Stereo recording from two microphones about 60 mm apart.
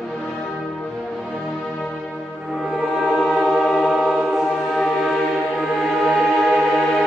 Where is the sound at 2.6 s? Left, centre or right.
Centre.